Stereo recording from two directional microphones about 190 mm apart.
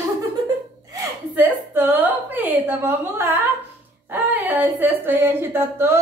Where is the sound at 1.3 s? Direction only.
10° right (ahead or behind).